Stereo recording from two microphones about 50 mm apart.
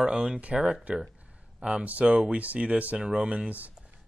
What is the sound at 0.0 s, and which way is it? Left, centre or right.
Speech, centre.